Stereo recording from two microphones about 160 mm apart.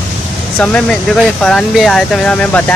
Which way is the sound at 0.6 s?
5° left (ahead or behind).